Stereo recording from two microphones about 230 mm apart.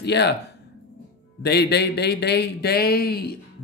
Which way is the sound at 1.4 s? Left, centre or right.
Left.